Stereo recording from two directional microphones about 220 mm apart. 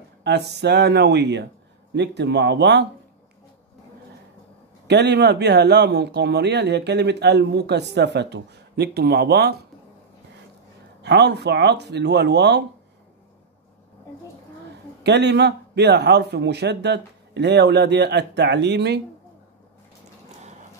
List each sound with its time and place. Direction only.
0.2 s speech: 50° right (ahead or behind)
4.8 s speech: 50° right (ahead or behind)
11.0 s speech: 50° right (ahead or behind)
15.0 s speech: 50° right (ahead or behind)